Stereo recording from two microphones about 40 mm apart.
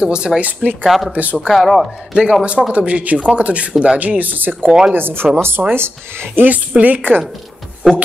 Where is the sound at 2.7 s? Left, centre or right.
Right.